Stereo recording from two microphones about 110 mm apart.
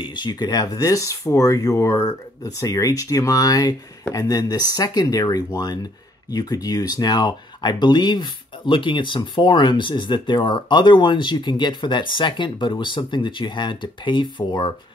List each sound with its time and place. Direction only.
0.0 s speech: 45° left (ahead or behind)